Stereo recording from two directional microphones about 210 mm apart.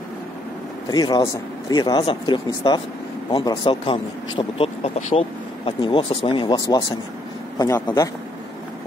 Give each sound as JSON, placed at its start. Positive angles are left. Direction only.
{"t": 0.8, "sound": "a man's voice", "side_deg": 20}